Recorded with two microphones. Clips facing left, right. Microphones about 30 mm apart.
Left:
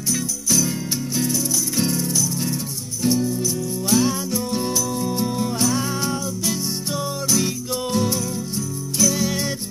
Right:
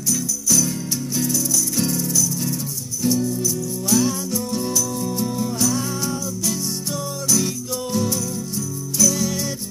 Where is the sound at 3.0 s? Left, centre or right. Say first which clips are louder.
Even; left.